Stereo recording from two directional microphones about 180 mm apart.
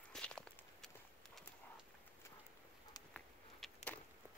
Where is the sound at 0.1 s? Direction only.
5° left (ahead or behind).